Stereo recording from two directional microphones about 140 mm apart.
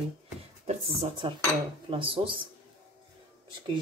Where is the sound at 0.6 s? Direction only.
50° right (ahead or behind).